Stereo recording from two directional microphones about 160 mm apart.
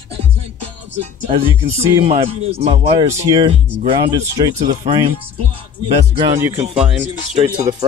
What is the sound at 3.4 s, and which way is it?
Speech, 35° right (ahead or behind).